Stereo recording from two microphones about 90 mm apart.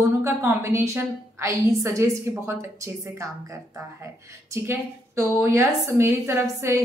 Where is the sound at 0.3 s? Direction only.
25° right (ahead or behind).